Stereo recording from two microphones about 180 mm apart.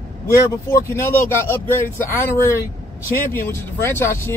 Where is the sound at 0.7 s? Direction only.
15° left (ahead or behind).